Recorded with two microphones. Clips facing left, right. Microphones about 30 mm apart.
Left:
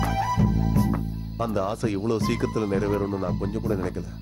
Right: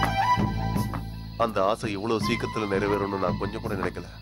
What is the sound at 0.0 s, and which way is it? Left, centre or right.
Music, right.